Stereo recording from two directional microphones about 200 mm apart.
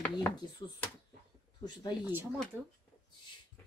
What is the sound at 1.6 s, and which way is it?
Speech, 20° left (ahead or behind).